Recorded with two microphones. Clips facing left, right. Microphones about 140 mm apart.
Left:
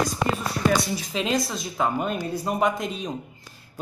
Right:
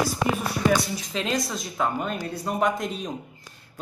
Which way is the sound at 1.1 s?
Centre (ahead or behind).